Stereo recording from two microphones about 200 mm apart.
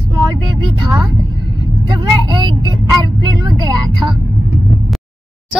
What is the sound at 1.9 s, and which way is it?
Speech, 20° right (ahead or behind).